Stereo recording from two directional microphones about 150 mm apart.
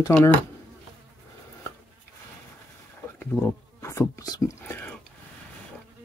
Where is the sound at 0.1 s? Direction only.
10° left (ahead or behind).